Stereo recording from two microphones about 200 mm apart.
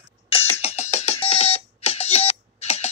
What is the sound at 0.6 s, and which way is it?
Music, 30° left (ahead or behind).